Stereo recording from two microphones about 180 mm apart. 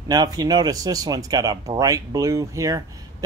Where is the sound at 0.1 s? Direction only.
20° right (ahead or behind).